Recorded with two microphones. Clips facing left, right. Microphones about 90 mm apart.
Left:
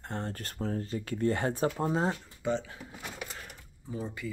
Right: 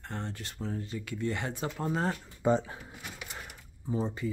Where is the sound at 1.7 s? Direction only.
25° left (ahead or behind).